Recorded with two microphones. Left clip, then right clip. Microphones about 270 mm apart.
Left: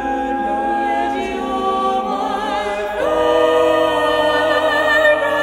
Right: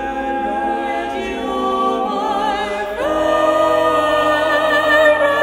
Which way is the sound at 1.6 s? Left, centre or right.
Left.